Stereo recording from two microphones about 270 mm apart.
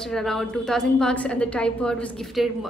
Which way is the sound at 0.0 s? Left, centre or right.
Centre.